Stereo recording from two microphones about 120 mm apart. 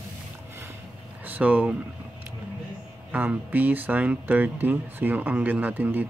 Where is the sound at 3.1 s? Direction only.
15° right (ahead or behind).